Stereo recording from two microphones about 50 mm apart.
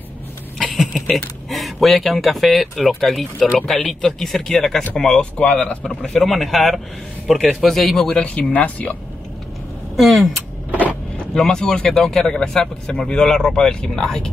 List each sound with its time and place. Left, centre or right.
0.7 s a man's voice: centre
5.6 s speech: left
5.9 s speech: centre
6.2 s a man's voice: centre
8.2 s speech: left
9.9 s a man's voice: centre
11.3 s speech: centre